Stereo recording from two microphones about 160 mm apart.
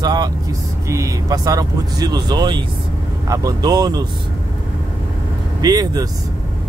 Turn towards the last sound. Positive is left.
turn(degrees=-25)  # may be behind; listen again after turning